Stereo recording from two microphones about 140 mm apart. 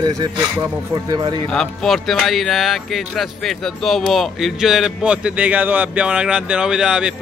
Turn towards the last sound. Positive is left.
turn(degrees=-5)  # may be behind; listen again after turning